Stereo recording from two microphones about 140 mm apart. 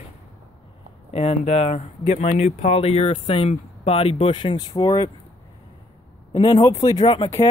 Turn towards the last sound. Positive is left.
turn(degrees=30)  # may be behind; listen again after turning